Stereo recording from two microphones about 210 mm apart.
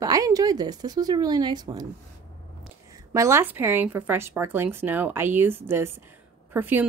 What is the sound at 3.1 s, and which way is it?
Speech, 15° right (ahead or behind).